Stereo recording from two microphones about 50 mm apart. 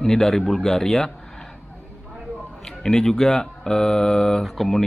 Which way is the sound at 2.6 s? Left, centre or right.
Centre.